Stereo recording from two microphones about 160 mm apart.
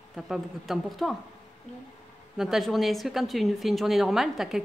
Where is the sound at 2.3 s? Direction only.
Centre (ahead or behind).